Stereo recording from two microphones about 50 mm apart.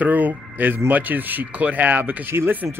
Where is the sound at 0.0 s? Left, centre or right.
Right.